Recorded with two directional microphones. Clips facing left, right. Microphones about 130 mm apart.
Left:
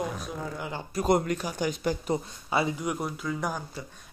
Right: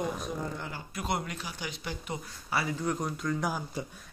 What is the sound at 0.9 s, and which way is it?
Speech, 40° left (ahead or behind).